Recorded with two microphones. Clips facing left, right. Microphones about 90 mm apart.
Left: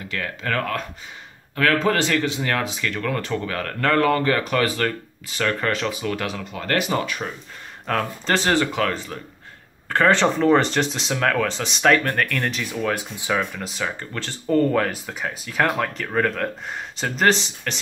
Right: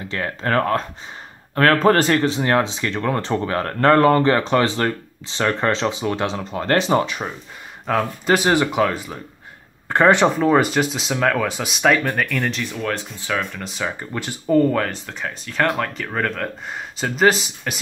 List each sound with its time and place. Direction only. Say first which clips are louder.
0.1 s speech: right 5 dB; 35° right (ahead or behind)
1.5 s speech: right 5 dB; 45° right (ahead or behind); by 7.2 s 25° right (ahead or behind)
7.8 s speech: right 3 dB; 10° right (ahead or behind)
10.3 s speech: right 1 dB; 5° right (ahead or behind)
14.1 s speech: right 3 dB; 15° right (ahead or behind)
14.5 s speech: right 2 dB; centre (ahead or behind)